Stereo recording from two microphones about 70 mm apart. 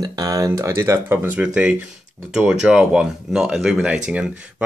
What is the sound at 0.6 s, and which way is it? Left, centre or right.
Speech, right.